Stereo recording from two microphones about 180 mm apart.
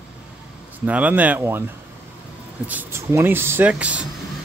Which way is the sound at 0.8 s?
10° right (ahead or behind).